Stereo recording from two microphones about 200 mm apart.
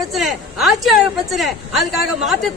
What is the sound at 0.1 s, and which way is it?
A woman's voice, centre (ahead or behind).